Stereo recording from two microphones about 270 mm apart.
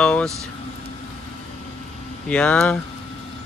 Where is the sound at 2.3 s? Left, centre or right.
Centre.